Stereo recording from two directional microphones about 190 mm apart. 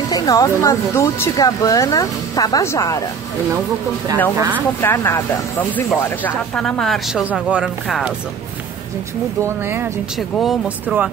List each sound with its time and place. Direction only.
0.1 s speech: 20° left (ahead or behind)
4.4 s speech: 10° right (ahead or behind)
4.8 s speech: 15° left (ahead or behind); by 8.1 s 5° right (ahead or behind)
10.1 s speech: centre (ahead or behind)